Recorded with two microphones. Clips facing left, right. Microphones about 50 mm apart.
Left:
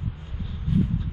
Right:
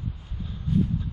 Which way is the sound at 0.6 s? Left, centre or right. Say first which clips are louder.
Even; centre.